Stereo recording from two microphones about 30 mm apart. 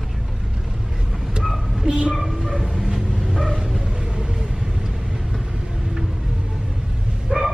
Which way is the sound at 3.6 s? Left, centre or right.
Centre.